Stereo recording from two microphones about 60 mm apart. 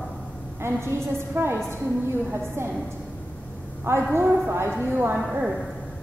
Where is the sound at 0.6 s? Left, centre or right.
Right.